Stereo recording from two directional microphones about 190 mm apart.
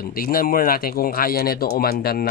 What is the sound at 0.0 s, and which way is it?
Speech, 50° left (ahead or behind).